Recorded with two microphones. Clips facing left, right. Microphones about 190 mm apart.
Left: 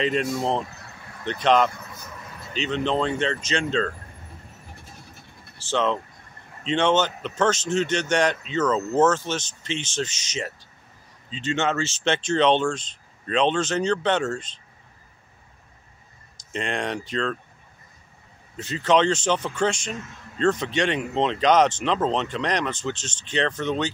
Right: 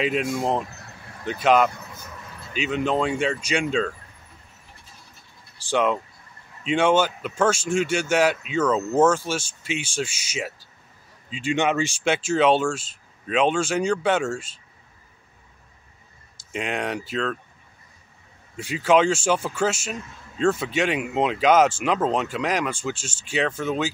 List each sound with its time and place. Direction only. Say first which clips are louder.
0.0 s a man's voice: even; 5° right (ahead or behind)
5.6 s a man's voice: right 2 dB; 10° right (ahead or behind)
16.5 s speech: even; 5° right (ahead or behind)
18.6 s a man's voice: right 1 dB; 10° right (ahead or behind)